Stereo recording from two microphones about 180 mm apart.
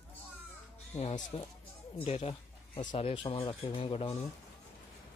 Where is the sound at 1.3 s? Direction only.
30° left (ahead or behind).